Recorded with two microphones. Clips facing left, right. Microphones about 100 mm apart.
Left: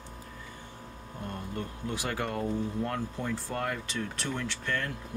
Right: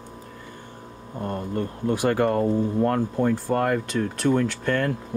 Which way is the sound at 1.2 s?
50° right (ahead or behind).